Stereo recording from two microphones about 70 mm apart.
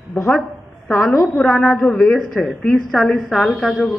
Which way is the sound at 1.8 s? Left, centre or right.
Centre.